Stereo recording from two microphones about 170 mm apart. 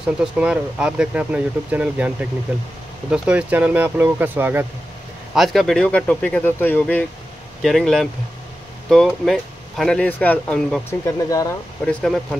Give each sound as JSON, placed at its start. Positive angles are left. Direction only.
{"t": 0.0, "sound": "speech", "side_deg": -5}
{"t": 5.3, "sound": "speech", "side_deg": 0}
{"t": 10.9, "sound": "speech", "side_deg": 20}
{"t": 11.8, "sound": "speech", "side_deg": 0}